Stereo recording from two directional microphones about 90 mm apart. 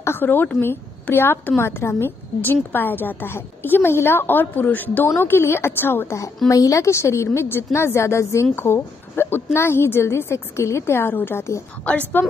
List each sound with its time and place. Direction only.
0.0 s a sound: 25° left (ahead or behind)
0.6 s a woman's voice: 25° left (ahead or behind)
11.8 s a woman's voice: 15° left (ahead or behind)